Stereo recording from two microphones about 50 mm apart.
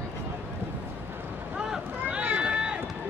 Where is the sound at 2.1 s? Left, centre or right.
Right.